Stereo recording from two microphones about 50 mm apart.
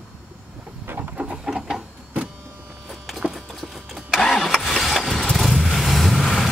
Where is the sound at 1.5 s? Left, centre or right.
Centre.